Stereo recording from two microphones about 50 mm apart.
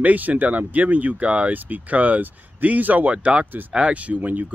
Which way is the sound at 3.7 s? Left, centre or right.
Right.